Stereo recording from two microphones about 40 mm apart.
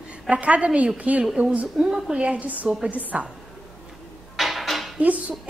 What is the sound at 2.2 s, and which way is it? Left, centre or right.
A woman's voice, right.